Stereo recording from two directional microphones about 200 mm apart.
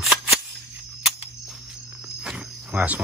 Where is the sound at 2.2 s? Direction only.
Centre (ahead or behind).